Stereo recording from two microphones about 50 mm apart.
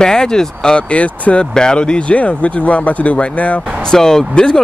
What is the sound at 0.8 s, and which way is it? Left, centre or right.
Speech, left.